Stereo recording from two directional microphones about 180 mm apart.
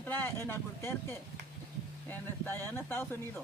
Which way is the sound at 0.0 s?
10° left (ahead or behind).